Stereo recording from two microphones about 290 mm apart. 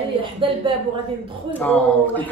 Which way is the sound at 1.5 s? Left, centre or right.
Centre.